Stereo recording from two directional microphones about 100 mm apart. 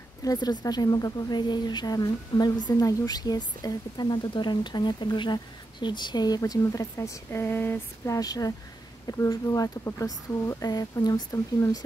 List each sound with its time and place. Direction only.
0.2 s a woman's voice: 40° left (ahead or behind)